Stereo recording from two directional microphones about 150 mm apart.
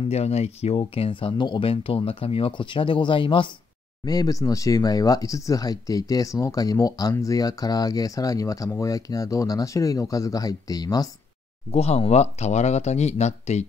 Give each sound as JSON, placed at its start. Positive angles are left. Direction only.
{"t": 0.0, "sound": "speech", "side_deg": 45}
{"t": 11.7, "sound": "speech", "side_deg": 45}